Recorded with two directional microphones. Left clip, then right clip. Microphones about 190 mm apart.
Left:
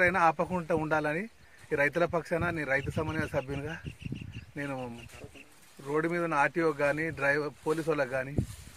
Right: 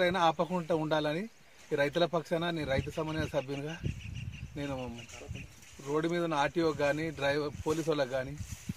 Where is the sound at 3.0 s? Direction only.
15° left (ahead or behind).